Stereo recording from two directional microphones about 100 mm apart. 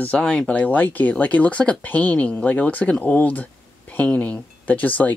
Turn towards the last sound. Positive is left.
turn(degrees=15)  # may be behind; listen again after turning